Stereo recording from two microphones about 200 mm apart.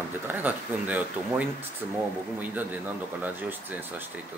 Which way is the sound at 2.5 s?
10° right (ahead or behind).